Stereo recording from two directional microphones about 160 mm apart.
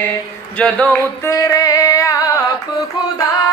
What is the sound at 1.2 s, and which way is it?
Music, 20° left (ahead or behind).